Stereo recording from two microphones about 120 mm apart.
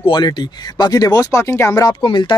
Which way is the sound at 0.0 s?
40° left (ahead or behind).